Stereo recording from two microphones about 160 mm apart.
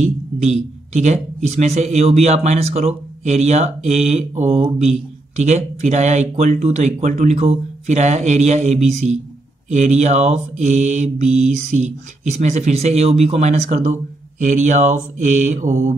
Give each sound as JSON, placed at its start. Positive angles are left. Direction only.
{"t": 0.0, "sound": "speech", "side_deg": -45}